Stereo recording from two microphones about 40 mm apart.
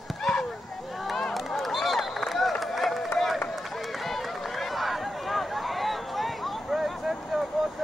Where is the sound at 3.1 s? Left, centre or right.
Centre.